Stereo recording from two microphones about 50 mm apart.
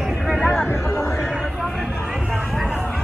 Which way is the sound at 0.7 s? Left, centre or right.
Left.